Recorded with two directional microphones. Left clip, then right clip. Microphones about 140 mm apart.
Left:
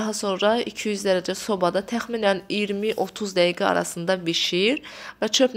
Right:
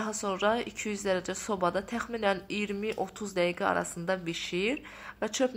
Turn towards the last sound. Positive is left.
turn(degrees=35)  # may be behind; listen again after turning